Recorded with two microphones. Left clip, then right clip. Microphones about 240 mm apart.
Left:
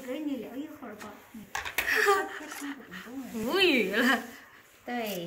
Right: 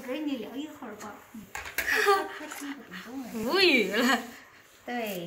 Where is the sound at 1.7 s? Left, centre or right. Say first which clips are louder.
Right 1 dB; centre.